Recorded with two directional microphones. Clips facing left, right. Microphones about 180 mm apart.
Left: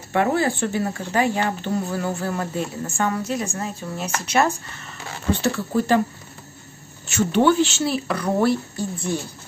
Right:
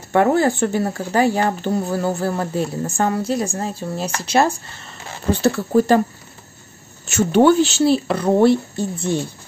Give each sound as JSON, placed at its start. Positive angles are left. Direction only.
{"t": 0.1, "sound": "speech", "side_deg": -45}
{"t": 7.1, "sound": "speech", "side_deg": -45}